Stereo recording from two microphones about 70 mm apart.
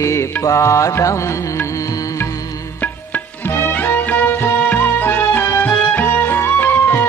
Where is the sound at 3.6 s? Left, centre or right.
Left.